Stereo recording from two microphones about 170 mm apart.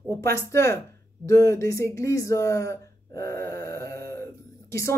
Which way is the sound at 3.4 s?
15° left (ahead or behind).